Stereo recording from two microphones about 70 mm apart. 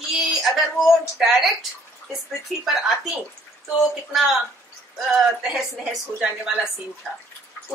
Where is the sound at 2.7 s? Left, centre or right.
Centre.